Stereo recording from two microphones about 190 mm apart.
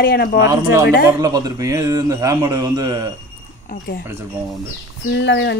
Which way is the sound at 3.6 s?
55° left (ahead or behind).